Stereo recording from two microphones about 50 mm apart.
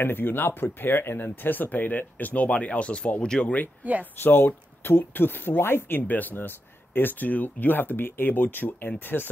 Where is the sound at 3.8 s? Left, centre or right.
Right.